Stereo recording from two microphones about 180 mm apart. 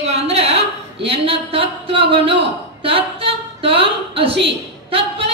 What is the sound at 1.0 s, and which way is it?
A man's voice, 30° right (ahead or behind).